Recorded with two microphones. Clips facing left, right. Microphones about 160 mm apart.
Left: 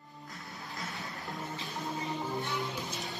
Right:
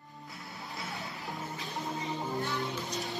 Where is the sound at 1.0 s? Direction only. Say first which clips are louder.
Right 1 dB; centre (ahead or behind).